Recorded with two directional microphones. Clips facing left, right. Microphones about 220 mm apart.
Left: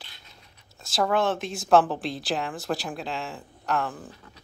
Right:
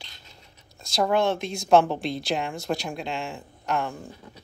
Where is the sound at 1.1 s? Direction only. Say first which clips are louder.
Right 2 dB; centre (ahead or behind).